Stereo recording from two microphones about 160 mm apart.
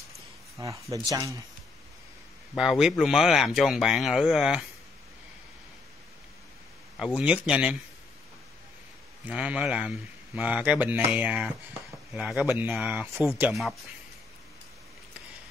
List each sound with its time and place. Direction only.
0.6 s speech: 20° right (ahead or behind)
2.5 s speech: 5° right (ahead or behind)
7.0 s speech: 10° right (ahead or behind)
9.2 s speech: 5° right (ahead or behind)